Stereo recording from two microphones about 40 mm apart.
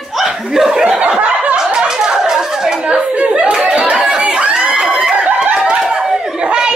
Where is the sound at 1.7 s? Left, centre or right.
Centre.